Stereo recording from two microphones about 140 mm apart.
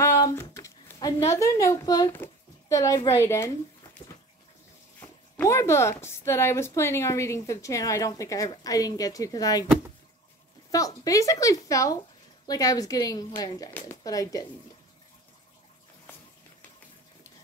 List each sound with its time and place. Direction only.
0.0 s a sound: 20° left (ahead or behind)
1.3 s speech: 20° left (ahead or behind)
4.0 s bathtub: 40° left (ahead or behind)
5.0 s speech: 20° left (ahead or behind)
10.7 s speech: 25° left (ahead or behind)
16.1 s a sound: 15° left (ahead or behind)